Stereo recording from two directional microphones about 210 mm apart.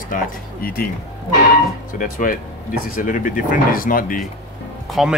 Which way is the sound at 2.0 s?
40° left (ahead or behind).